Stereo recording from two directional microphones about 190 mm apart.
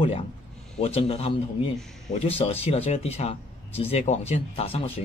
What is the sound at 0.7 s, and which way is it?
Speech, 30° left (ahead or behind).